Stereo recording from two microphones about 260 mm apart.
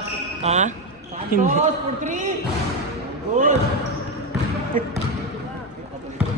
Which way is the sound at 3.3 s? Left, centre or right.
Right.